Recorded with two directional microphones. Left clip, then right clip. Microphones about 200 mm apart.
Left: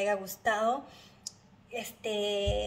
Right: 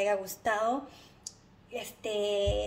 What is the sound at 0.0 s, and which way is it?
A woman's voice, 30° right (ahead or behind).